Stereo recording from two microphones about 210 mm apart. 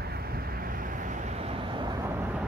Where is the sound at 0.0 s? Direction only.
50° right (ahead or behind).